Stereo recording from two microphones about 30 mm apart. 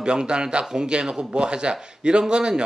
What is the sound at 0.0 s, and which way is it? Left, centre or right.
A man's voice, right.